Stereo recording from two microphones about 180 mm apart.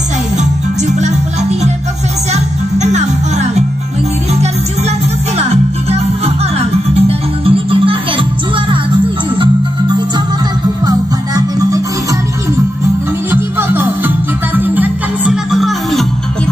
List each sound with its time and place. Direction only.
0.4 s music: 40° right (ahead or behind)
2.3 s music: 40° right (ahead or behind)
5.4 s music: 35° right (ahead or behind)
9.4 s music: 25° right (ahead or behind)
13.3 s music: 10° right (ahead or behind)